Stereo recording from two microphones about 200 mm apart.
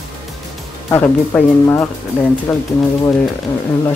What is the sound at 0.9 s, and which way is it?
Speech, 10° left (ahead or behind).